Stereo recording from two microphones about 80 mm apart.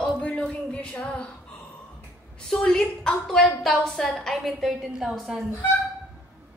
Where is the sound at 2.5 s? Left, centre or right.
Centre.